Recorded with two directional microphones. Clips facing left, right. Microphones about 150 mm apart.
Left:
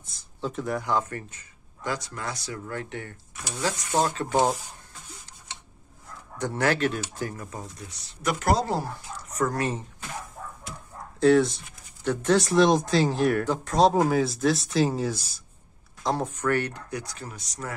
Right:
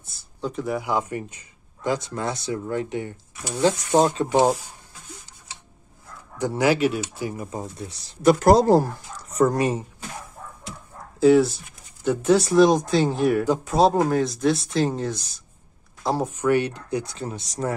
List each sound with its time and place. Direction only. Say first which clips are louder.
0.4 s speech: right 3 dB; centre (ahead or behind); by 4.6 s 15° right (ahead or behind)
6.3 s speech: right 5 dB; 10° right (ahead or behind)
7.5 s speech: right 7 dB; 30° right (ahead or behind)
9.3 s speech: right 7 dB; 25° right (ahead or behind)
9.6 s speech: right 6 dB; 15° right (ahead or behind)
11.1 s speech: right 3 dB; 5° right (ahead or behind)
16.0 s speech: right 3 dB; 10° right (ahead or behind); by 17.7 s 30° right (ahead or behind)